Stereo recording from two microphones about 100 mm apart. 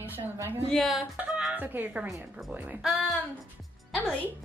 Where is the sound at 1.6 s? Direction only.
20° right (ahead or behind).